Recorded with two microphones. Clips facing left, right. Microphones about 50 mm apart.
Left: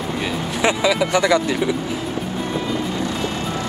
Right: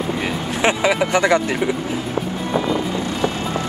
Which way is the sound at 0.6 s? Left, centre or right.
Right.